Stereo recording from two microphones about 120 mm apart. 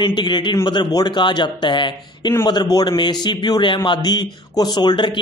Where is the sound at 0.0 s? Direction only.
40° left (ahead or behind).